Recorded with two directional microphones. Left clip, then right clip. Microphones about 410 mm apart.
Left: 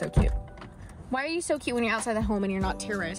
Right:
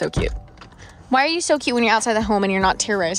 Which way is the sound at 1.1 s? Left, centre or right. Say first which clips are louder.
Right 11 dB; centre.